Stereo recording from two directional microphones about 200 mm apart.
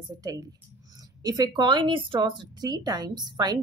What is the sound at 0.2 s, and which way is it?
A woman's voice, 15° right (ahead or behind).